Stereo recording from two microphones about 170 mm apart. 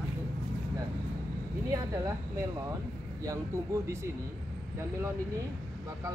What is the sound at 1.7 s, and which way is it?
Speech, 20° right (ahead or behind).